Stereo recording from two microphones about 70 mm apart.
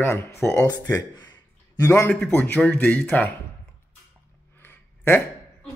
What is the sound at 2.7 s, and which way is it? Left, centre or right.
Speech, left.